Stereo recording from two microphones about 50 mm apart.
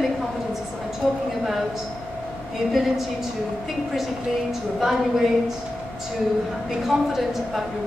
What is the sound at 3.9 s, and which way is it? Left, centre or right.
A woman's voice, centre.